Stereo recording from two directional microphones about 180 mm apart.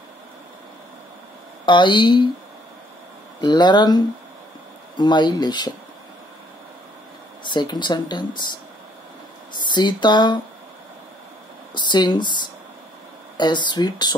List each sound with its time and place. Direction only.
1.7 s speech: 25° left (ahead or behind)
3.3 s speech: 25° left (ahead or behind)
7.4 s speech: 25° left (ahead or behind)
9.6 s speech: 25° left (ahead or behind)
11.7 s speech: 25° left (ahead or behind)